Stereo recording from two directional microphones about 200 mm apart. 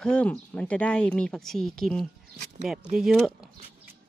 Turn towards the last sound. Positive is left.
turn(degrees=0)  # may be behind; listen again after turning